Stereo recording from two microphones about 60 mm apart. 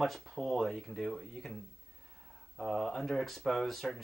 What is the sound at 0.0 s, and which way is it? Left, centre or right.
Speech, centre.